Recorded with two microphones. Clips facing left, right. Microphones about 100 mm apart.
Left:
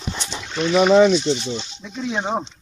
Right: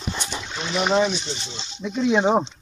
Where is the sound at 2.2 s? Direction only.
20° right (ahead or behind).